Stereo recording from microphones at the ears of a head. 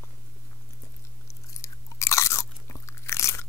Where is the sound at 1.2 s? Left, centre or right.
Left.